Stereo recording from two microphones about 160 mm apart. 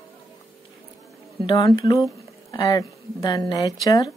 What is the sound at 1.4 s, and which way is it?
Speech, 30° left (ahead or behind).